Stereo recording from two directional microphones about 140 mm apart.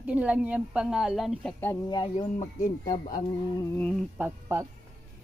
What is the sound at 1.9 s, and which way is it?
Speech, 35° left (ahead or behind).